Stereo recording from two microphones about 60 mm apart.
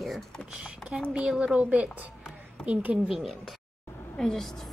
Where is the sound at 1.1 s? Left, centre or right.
Centre.